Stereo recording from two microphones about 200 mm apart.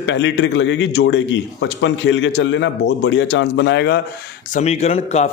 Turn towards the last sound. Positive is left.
turn(degrees=35)  # may be behind; listen again after turning